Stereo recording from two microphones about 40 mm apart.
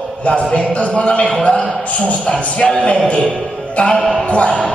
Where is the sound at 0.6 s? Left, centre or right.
Left.